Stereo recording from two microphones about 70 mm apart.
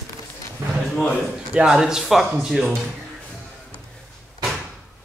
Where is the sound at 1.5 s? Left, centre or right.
Centre.